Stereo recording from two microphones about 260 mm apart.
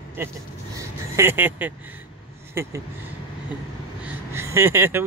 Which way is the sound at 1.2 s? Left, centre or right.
Centre.